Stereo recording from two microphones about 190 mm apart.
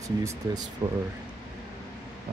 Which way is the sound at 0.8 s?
20° right (ahead or behind).